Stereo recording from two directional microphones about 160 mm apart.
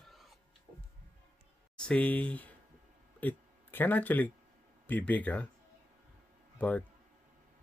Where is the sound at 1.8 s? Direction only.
5° left (ahead or behind).